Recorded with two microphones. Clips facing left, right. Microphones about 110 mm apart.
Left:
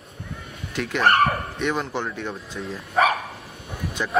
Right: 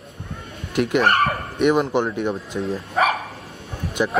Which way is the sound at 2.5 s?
30° right (ahead or behind).